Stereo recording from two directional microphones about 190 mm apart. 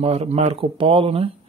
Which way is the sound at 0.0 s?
30° right (ahead or behind).